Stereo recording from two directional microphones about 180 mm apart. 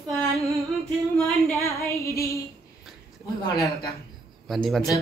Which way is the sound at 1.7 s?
15° left (ahead or behind).